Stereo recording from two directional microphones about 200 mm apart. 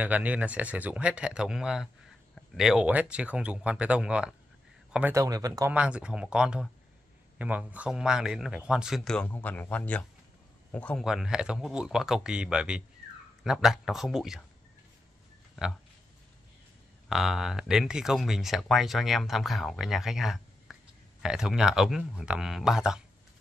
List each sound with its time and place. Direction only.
0.0 s speech: 5° right (ahead or behind)
5.7 s speech: 5° right (ahead or behind)
17.1 s speech: centre (ahead or behind)